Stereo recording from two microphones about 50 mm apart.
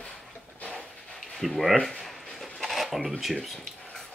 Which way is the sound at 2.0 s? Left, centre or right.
Centre.